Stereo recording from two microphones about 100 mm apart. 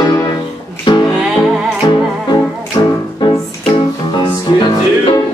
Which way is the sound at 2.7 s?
55° left (ahead or behind).